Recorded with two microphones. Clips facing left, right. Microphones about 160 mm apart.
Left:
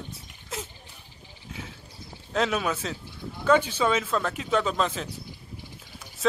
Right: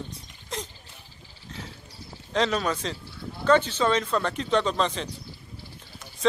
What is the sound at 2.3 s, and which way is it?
Speech, 5° left (ahead or behind).